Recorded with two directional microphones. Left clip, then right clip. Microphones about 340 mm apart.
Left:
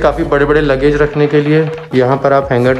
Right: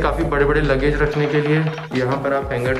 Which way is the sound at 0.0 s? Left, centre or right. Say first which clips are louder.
Left 7 dB; centre.